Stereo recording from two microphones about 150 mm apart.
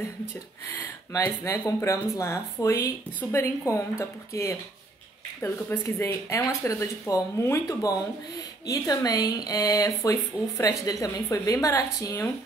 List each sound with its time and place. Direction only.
1.2 s speech: 15° left (ahead or behind)